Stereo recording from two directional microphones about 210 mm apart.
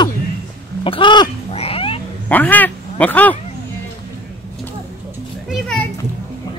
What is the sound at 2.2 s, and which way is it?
Speech, 10° left (ahead or behind).